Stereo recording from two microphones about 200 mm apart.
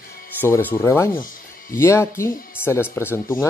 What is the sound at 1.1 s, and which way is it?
Music, 45° left (ahead or behind).